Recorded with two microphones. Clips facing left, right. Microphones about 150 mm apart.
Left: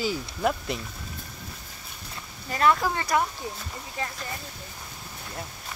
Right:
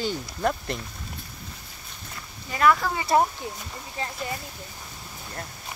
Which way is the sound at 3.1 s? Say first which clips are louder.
Right 5 dB; 35° right (ahead or behind).